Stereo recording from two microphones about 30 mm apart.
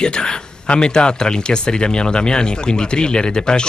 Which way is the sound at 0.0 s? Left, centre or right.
Left.